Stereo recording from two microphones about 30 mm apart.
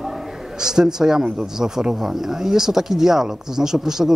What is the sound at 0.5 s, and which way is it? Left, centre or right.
A man's voice, right.